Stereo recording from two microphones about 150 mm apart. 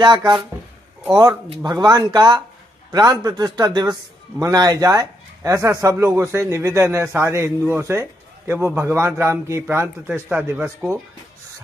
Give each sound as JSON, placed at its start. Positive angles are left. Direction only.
{"t": 0.0, "sound": "a man's voice", "side_deg": -30}
{"t": 1.5, "sound": "a man's voice", "side_deg": -30}